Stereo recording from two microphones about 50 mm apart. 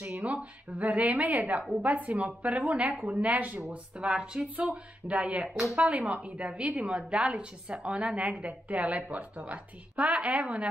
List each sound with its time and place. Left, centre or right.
0.0 s a woman's voice: right
3.6 s a woman's voice: centre
5.5 s speech: centre
5.8 s a woman's voice: right